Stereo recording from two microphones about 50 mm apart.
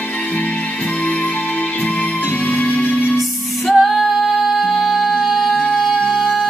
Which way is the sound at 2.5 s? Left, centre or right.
Left.